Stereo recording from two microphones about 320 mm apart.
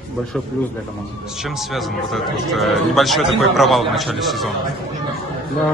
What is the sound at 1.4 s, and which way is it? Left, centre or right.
A man's voice, centre.